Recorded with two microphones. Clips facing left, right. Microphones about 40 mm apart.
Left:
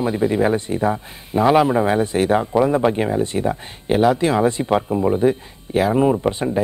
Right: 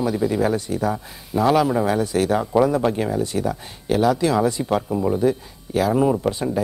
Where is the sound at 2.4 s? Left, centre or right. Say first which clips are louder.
Left 1 dB; centre.